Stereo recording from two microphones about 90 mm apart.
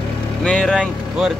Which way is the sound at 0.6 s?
5° right (ahead or behind).